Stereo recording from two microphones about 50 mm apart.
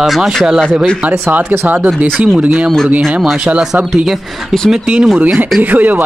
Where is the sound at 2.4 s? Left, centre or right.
Right.